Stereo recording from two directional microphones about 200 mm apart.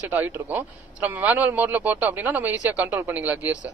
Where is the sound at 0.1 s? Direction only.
10° right (ahead or behind).